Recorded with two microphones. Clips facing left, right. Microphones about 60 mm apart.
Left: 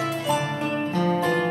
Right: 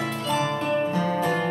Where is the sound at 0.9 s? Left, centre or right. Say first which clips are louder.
Left 1 dB; centre.